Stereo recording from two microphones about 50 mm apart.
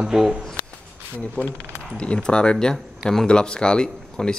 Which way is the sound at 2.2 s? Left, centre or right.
Centre.